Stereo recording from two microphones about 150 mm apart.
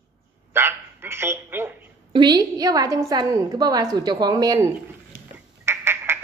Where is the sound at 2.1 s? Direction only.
30° right (ahead or behind).